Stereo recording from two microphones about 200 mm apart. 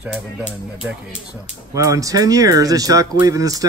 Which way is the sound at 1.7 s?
15° right (ahead or behind).